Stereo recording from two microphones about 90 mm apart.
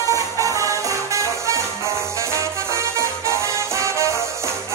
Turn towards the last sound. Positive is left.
turn(degrees=-35)  # may be behind; listen again after turning